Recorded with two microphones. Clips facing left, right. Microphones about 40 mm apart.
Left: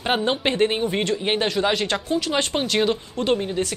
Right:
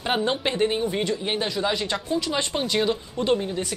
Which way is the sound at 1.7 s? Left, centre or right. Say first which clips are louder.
Left 3 dB; left.